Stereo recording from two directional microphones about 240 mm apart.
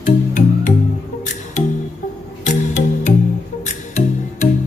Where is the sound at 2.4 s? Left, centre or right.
Left.